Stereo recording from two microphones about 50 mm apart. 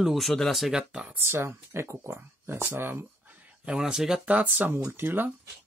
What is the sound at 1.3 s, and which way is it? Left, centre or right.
Speech, right.